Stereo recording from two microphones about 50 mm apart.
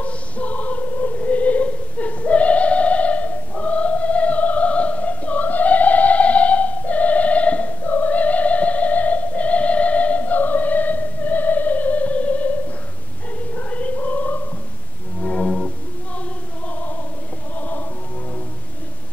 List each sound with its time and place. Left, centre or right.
0.0 s a sound: left
13.6 s music: left
17.6 s choir: left